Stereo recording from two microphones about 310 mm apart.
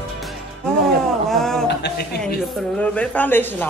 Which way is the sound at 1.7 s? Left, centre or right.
Left.